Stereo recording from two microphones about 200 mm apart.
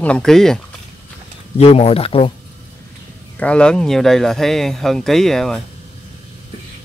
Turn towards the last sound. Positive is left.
turn(degrees=0)  # may be behind; listen again after turning